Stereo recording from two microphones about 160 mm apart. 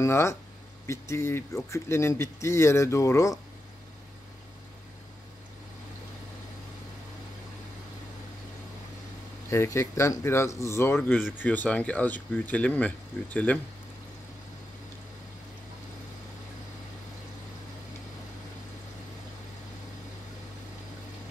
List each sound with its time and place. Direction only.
0.0 s speech: 20° left (ahead or behind)
9.5 s speech: 15° left (ahead or behind)